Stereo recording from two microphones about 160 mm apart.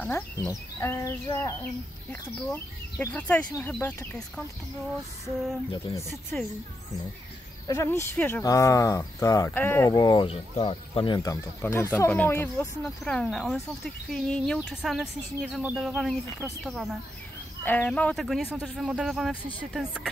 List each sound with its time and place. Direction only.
0.5 s speech: 15° left (ahead or behind)
5.7 s speech: 25° left (ahead or behind)
7.6 s speech: 20° left (ahead or behind)
11.6 s speech: 15° left (ahead or behind)
17.6 s speech: 10° left (ahead or behind)